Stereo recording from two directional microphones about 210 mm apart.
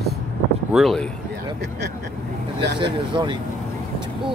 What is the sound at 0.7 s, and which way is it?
Speech, centre (ahead or behind).